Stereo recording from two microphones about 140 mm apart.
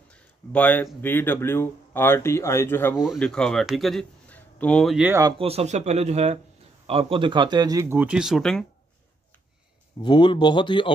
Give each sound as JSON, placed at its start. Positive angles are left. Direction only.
{"t": 0.1, "sound": "a sound", "side_deg": 10}
{"t": 1.0, "sound": "speech", "side_deg": 15}
{"t": 3.2, "sound": "speech", "side_deg": 5}
{"t": 4.3, "sound": "a sound", "side_deg": 10}
{"t": 4.9, "sound": "speech", "side_deg": -10}
{"t": 5.4, "sound": "speech", "side_deg": -45}
{"t": 10.0, "sound": "speech", "side_deg": 35}